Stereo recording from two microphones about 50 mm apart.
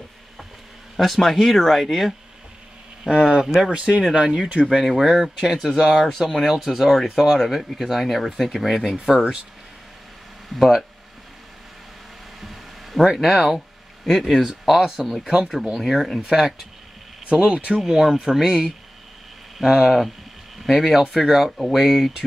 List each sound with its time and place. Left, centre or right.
0.9 s speech: centre
3.0 s speech: centre
3.7 s speech: centre
4.6 s speech: centre
7.3 s speech: centre
10.5 s speech: centre
12.4 s a sound: centre
14.0 s speech: centre
17.3 s speech: right
17.8 s speech: centre